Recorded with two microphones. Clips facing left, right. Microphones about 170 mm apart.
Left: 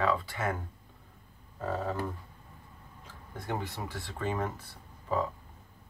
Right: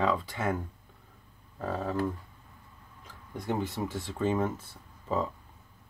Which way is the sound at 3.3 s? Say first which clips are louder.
Right 4 dB; 20° right (ahead or behind).